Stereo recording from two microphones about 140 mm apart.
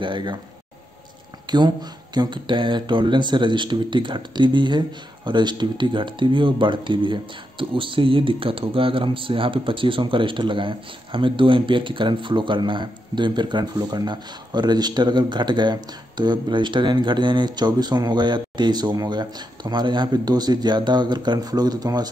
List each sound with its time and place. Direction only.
0.0 s speech: 35° right (ahead or behind)
1.5 s speech: 30° right (ahead or behind)